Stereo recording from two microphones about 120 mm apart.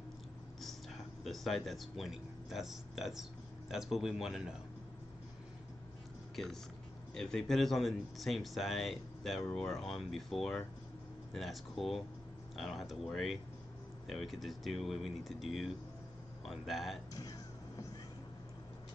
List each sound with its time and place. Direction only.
0.6 s speech: centre (ahead or behind)
6.3 s speech: centre (ahead or behind)
17.1 s music: 30° left (ahead or behind)